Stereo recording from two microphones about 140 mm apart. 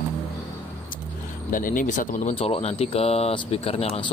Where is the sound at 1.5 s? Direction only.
75° left (ahead or behind).